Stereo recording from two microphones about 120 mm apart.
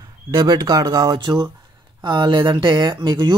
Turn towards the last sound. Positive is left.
turn(degrees=-40)  # may be behind; listen again after turning